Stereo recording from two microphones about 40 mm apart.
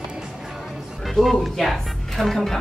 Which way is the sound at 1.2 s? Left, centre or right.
Centre.